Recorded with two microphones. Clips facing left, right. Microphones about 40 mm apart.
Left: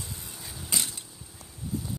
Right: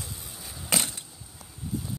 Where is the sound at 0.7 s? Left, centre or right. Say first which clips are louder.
Right 4 dB; right.